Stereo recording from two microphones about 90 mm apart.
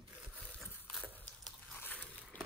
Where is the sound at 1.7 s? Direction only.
20° left (ahead or behind).